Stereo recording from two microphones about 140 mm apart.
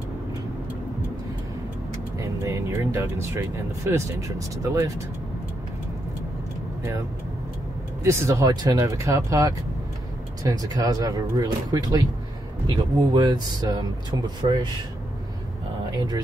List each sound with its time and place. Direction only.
2.1 s speech: 20° right (ahead or behind)
8.0 s speech: 20° right (ahead or behind)
14.4 s speech: 45° right (ahead or behind)